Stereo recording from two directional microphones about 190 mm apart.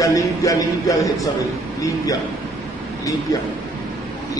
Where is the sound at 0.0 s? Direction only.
15° left (ahead or behind).